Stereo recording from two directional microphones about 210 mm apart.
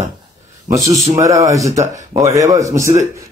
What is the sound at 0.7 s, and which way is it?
Speech, 15° right (ahead or behind).